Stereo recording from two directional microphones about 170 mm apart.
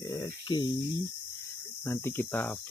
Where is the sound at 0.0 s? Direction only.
20° left (ahead or behind).